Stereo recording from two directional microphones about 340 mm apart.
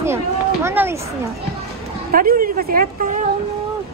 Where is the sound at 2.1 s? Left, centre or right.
Right.